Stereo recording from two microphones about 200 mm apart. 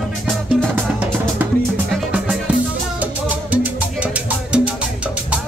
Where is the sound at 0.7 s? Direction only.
10° right (ahead or behind).